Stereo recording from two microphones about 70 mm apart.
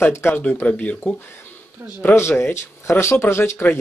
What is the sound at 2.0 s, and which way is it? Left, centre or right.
Speech, left.